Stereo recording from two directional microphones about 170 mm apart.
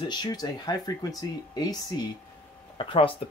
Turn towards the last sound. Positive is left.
turn(degrees=30)  # may be behind; listen again after turning